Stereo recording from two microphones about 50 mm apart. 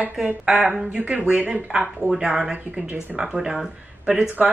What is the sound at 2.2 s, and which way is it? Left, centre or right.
A woman's voice, centre.